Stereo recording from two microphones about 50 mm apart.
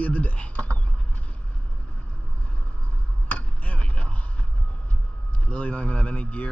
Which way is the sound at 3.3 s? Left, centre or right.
Left.